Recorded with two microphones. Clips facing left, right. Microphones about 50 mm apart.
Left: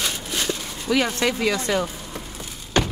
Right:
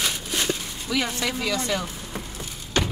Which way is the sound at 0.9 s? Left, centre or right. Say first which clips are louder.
Left 5 dB; left.